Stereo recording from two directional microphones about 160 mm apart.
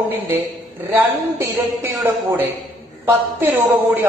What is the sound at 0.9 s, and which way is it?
A man's voice, 15° right (ahead or behind).